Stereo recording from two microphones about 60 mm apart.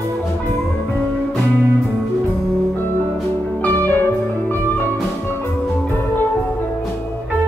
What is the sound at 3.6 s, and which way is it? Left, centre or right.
Music, left.